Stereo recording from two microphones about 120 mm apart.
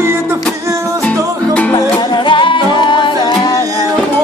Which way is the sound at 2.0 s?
40° left (ahead or behind).